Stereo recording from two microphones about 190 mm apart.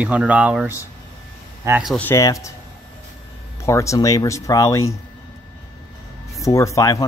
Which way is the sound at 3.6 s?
15° left (ahead or behind).